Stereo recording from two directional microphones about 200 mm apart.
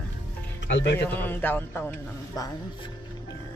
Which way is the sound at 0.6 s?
60° left (ahead or behind).